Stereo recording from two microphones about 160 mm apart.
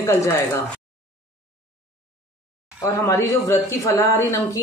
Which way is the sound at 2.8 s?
20° left (ahead or behind).